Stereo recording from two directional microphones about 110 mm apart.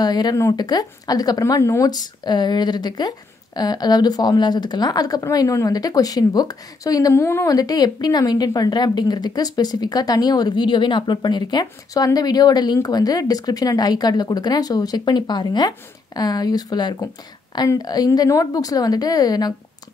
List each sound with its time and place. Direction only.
0.0 s a woman's voice: 35° left (ahead or behind)